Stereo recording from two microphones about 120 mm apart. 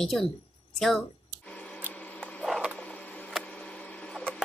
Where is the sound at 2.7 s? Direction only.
10° left (ahead or behind).